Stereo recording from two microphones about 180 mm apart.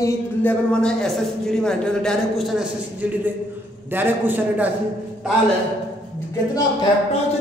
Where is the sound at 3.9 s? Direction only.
10° right (ahead or behind).